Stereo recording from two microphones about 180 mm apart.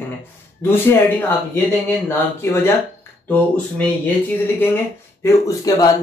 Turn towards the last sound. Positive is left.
turn(degrees=20)  # may be behind; listen again after turning